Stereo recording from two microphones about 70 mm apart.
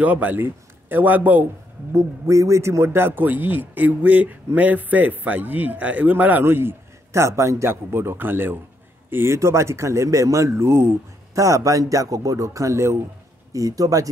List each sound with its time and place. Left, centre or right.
0.0 s speech: right
2.0 s a man's voice: right
9.1 s speech: right
13.5 s speech: right